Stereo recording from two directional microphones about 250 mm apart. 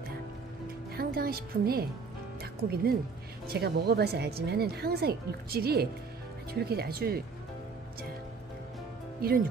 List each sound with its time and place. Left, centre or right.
0.9 s speech: right
9.2 s speech: right